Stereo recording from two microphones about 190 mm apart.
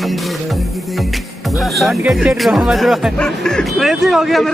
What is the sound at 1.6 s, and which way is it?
Speech, centre (ahead or behind).